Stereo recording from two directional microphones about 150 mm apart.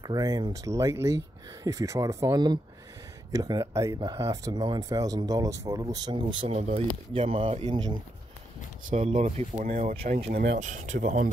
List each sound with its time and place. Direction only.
0.0 s speech: 25° right (ahead or behind)
6.5 s speech: 45° right (ahead or behind)
8.9 s speech: 50° right (ahead or behind); by 10.5 s 75° right (ahead or behind)
10.6 s speech: 55° right (ahead or behind)